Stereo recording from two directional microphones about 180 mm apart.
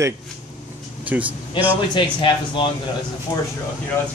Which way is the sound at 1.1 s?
10° right (ahead or behind).